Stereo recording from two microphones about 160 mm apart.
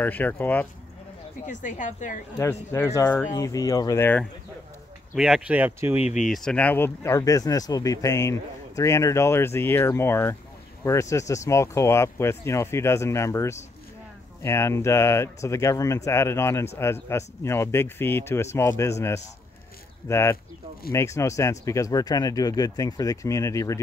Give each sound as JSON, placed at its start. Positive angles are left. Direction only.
{"t": 0.0, "sound": "speech", "side_deg": 10}
{"t": 1.4, "sound": "a woman's voice", "side_deg": 50}
{"t": 2.3, "sound": "speech", "side_deg": 15}
{"t": 5.1, "sound": "speech", "side_deg": -5}
{"t": 5.9, "sound": "a woman's voice", "side_deg": 45}
{"t": 6.2, "sound": "speech", "side_deg": 0}